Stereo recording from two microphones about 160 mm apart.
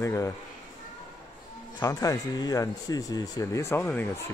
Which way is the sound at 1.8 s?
20° left (ahead or behind).